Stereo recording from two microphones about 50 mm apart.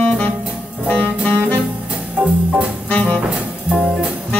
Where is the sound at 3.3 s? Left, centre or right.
Right.